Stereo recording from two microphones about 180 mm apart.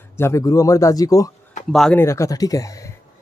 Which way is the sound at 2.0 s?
15° left (ahead or behind).